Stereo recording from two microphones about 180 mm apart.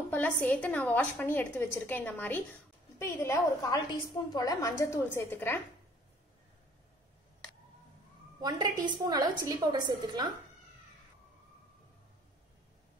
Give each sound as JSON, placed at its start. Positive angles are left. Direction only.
{"t": 0.1, "sound": "a woman's voice", "side_deg": 10}
{"t": 8.4, "sound": "a woman's voice", "side_deg": -25}